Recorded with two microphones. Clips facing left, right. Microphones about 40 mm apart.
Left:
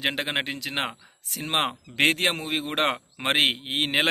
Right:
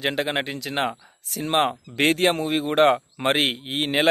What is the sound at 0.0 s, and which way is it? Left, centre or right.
Speech, centre.